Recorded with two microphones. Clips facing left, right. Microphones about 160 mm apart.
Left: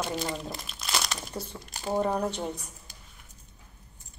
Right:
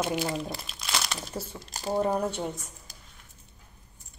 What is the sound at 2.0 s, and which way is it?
Speech, 5° right (ahead or behind).